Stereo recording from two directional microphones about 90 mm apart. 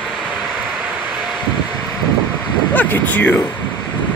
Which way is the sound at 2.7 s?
20° left (ahead or behind).